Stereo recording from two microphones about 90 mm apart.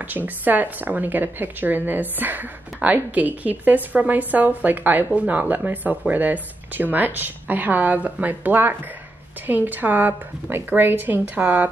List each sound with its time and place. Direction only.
0.0 s a woman's voice: 20° right (ahead or behind)